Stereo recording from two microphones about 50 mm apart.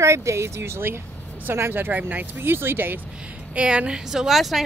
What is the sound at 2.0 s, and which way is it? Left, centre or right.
Speech, right.